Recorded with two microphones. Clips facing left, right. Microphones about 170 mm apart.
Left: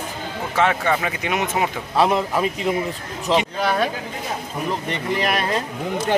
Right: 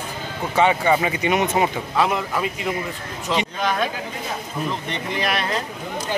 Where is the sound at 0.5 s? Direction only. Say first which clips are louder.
Right 2 dB; centre (ahead or behind).